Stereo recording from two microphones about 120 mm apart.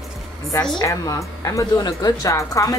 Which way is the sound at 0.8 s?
25° left (ahead or behind).